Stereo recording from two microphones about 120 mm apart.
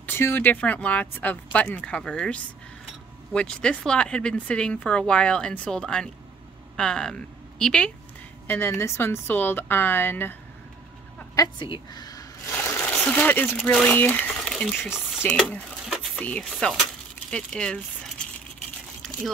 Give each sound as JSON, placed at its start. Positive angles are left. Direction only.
{"t": 0.0, "sound": "a woman's voice", "side_deg": 20}
{"t": 8.5, "sound": "speech", "side_deg": 20}
{"t": 11.3, "sound": "a woman's voice", "side_deg": 30}
{"t": 11.7, "sound": "shuffling cards", "side_deg": 35}
{"t": 13.1, "sound": "speech", "side_deg": 15}
{"t": 13.9, "sound": "speech", "side_deg": 15}
{"t": 14.4, "sound": "crumpling", "side_deg": 5}
{"t": 15.2, "sound": "speech", "side_deg": 10}